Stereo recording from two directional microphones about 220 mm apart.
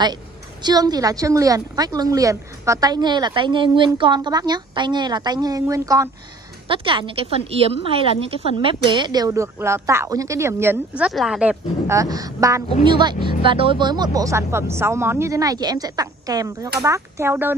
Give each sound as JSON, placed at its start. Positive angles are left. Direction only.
{"t": 0.0, "sound": "a woman's voice", "side_deg": -20}